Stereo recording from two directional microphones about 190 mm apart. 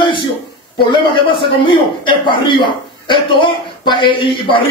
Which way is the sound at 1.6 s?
25° left (ahead or behind).